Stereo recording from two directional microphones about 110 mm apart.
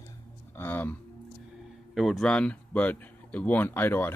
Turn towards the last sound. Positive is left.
turn(degrees=20)  # may be behind; listen again after turning